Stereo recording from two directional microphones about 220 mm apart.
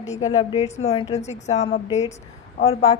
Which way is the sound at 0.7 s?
25° left (ahead or behind).